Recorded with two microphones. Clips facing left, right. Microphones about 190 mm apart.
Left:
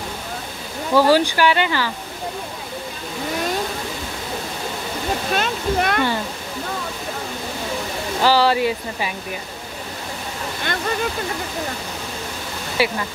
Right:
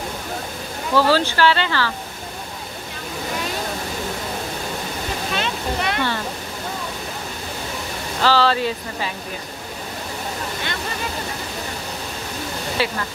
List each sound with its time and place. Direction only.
0.9 s speech: 15° left (ahead or behind)
5.3 s speech: 50° left (ahead or behind)
8.2 s speech: 15° left (ahead or behind)
12.8 s speech: 10° left (ahead or behind)